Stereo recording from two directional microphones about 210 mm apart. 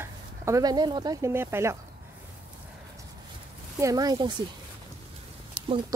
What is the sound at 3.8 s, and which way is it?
Speech, 15° right (ahead or behind).